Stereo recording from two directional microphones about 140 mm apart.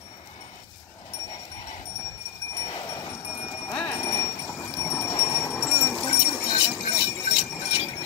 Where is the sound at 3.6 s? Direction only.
15° left (ahead or behind).